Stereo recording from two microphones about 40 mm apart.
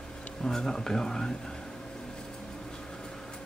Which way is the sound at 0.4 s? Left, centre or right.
Centre.